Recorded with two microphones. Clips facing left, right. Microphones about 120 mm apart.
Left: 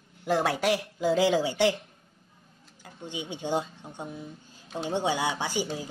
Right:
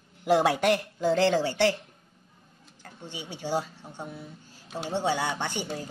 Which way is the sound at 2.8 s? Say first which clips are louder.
Left 3 dB; 15° left (ahead or behind).